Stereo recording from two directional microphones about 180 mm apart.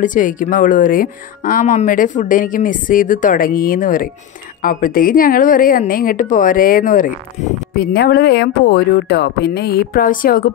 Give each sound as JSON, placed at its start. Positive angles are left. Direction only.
{"t": 0.0, "sound": "speech", "side_deg": 45}
{"t": 7.7, "sound": "speech", "side_deg": 60}